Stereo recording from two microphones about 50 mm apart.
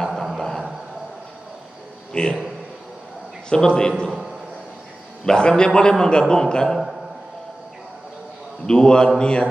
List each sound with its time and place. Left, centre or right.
0.0 s a sound: centre
2.1 s a man's voice: centre
3.4 s a man's voice: centre
5.2 s a man's voice: centre
8.6 s a man's voice: centre
9.2 s mantra: centre